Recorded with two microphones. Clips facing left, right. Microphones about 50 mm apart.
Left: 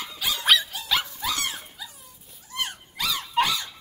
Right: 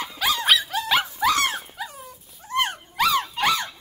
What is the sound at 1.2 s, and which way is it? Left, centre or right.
Dog, right.